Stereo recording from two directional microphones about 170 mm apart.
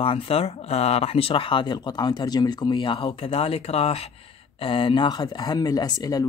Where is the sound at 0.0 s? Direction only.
35° left (ahead or behind).